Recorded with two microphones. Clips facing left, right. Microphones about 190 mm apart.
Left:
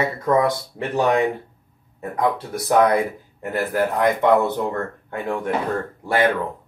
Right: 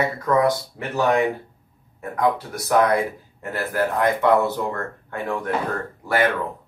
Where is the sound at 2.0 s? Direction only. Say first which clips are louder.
Even; 20° left (ahead or behind).